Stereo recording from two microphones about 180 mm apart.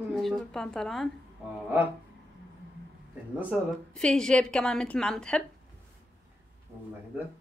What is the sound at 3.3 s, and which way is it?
Speech, 10° right (ahead or behind).